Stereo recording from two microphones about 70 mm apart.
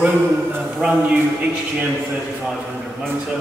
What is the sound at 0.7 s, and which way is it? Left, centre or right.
Speech, centre.